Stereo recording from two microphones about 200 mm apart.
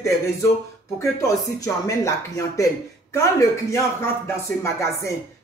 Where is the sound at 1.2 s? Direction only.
15° left (ahead or behind).